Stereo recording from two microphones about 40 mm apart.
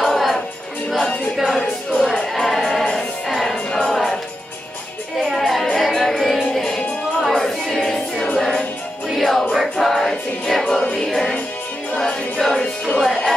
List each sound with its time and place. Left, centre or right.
0.0 s music: centre
3.5 s music: left
3.9 s music: centre
5.3 s music: centre
9.0 s music: centre
10.8 s music: left
11.1 s music: centre